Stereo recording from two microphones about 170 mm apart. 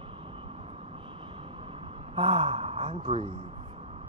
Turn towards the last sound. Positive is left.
turn(degrees=-35)  # may be behind; listen again after turning